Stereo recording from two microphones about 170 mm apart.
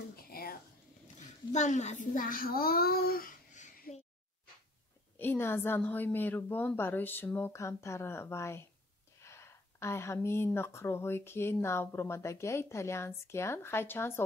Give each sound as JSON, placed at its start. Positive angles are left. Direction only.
{"t": 0.1, "sound": "a sound", "side_deg": 60}
{"t": 1.0, "sound": "a child's voice", "side_deg": 45}
{"t": 5.2, "sound": "speech", "side_deg": 15}